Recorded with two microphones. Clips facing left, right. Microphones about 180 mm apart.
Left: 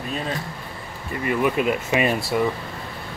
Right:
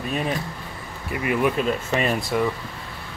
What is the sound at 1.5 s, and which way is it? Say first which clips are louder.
Speech: left 2 dB; 10° left (ahead or behind).